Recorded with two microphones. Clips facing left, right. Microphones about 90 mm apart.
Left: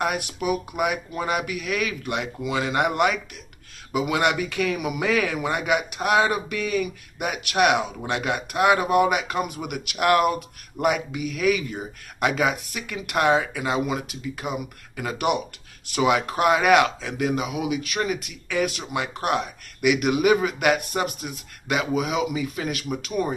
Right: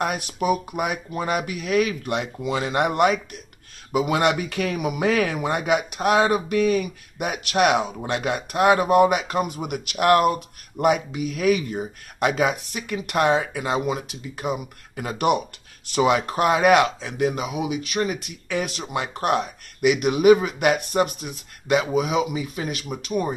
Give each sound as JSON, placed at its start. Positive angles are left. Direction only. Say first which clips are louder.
{"t": 0.0, "sound": "speech", "louder": "right 1 dB", "side_deg": -35}